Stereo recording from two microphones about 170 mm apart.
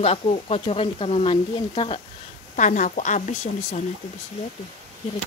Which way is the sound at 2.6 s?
45° left (ahead or behind).